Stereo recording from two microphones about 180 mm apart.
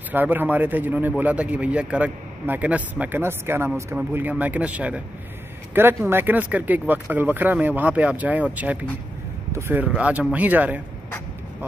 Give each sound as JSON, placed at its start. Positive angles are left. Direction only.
{"t": 0.1, "sound": "a man's voice", "side_deg": -10}
{"t": 6.0, "sound": "a man's voice", "side_deg": -10}